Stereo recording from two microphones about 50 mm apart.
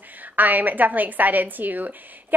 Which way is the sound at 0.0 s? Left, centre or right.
Right.